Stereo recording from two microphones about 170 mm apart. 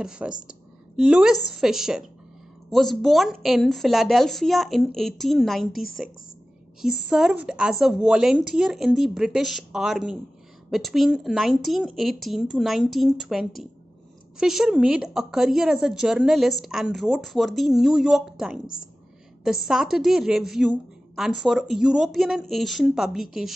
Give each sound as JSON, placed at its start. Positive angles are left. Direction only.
{"t": 0.0, "sound": "a woman's voice", "side_deg": -5}
{"t": 5.7, "sound": "a woman's voice", "side_deg": 60}
{"t": 6.8, "sound": "a woman's voice", "side_deg": 0}